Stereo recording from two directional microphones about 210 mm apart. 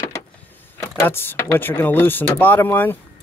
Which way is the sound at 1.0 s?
10° left (ahead or behind).